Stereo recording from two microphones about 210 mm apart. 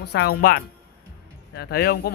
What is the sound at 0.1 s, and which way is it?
Speech, 50° left (ahead or behind).